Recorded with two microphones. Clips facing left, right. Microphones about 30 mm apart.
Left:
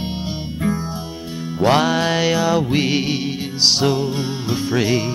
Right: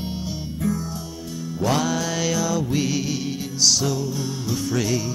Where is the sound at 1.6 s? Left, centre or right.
Left.